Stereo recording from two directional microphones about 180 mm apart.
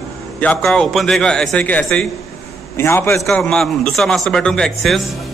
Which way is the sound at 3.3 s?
5° left (ahead or behind).